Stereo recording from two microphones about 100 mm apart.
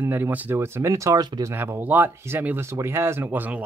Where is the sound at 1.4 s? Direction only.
25° right (ahead or behind).